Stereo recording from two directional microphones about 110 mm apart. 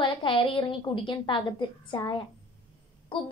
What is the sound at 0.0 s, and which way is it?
Speech, 50° left (ahead or behind).